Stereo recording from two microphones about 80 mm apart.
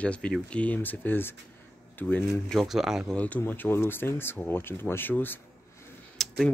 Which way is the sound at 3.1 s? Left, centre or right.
Centre.